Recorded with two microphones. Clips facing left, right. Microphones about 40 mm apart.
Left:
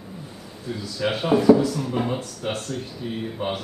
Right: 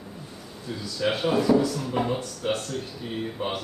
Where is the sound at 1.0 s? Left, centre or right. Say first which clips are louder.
Left 5 dB; centre.